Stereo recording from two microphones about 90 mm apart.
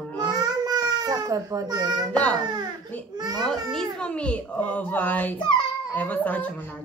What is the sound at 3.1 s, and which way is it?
Speech, 50° right (ahead or behind).